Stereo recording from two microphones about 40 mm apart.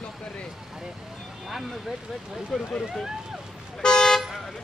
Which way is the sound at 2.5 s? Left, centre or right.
Centre.